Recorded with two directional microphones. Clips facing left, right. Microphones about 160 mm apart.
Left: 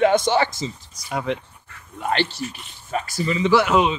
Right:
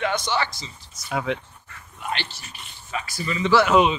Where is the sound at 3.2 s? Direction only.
20° left (ahead or behind).